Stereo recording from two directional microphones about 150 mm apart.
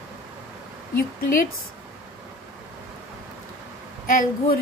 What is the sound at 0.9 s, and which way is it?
Speech, 70° left (ahead or behind).